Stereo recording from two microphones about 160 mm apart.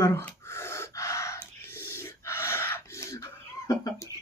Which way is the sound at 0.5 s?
15° left (ahead or behind).